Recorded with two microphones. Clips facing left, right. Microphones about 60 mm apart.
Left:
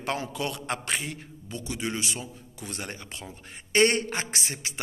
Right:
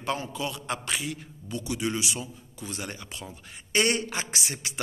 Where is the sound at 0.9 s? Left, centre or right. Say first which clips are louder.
Even; left.